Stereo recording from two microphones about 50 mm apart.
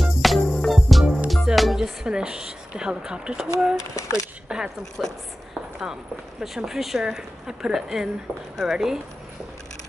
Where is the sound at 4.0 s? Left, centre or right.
Left.